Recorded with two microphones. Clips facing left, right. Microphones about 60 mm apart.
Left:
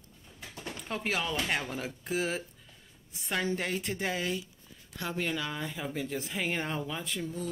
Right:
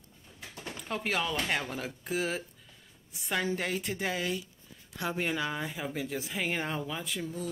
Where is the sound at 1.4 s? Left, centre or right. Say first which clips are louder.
Even; centre.